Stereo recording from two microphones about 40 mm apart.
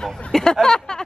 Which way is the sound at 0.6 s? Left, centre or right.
Centre.